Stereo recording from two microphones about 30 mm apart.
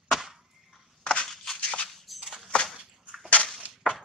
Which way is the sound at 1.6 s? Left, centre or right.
Left.